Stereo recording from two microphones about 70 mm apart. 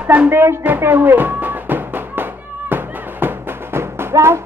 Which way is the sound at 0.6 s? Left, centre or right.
Right.